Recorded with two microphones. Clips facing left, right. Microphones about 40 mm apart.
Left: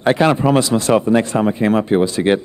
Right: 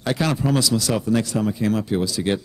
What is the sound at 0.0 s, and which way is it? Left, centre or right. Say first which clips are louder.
Speech: left 8 dB; left.